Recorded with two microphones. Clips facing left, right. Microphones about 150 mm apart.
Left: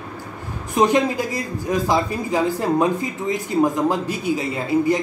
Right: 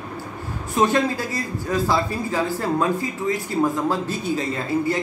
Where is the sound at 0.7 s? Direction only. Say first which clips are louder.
Left 2 dB; 15° left (ahead or behind).